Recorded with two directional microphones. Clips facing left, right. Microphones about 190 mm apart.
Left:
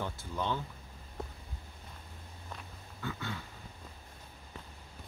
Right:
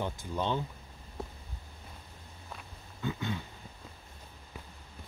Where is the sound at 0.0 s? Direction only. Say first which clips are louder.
Right 3 dB; 20° right (ahead or behind).